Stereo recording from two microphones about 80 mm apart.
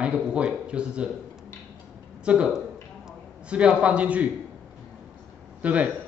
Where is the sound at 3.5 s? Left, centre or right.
Centre.